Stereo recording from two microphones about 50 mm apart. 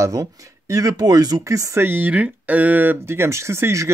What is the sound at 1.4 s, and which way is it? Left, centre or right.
Speech, right.